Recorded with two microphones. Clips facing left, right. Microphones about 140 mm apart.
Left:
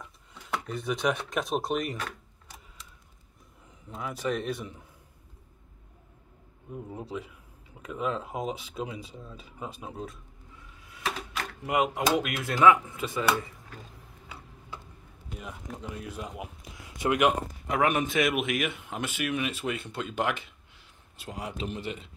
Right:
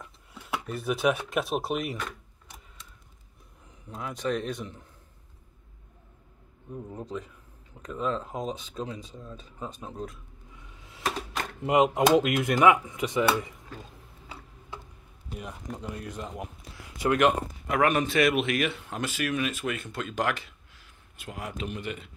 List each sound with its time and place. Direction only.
0.0 s speech: 5° right (ahead or behind)
3.9 s speech: 5° left (ahead or behind)
6.7 s speech: 5° left (ahead or behind)
11.3 s speech: 25° right (ahead or behind)
15.3 s speech: centre (ahead or behind)
16.8 s a sound: 25° left (ahead or behind)
17.2 s speech: 10° left (ahead or behind)
21.2 s speech: 30° left (ahead or behind)